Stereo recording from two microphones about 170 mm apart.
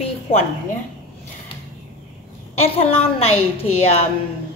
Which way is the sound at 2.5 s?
35° left (ahead or behind).